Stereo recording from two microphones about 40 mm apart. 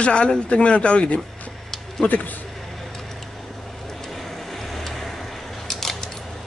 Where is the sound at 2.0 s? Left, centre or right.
Left.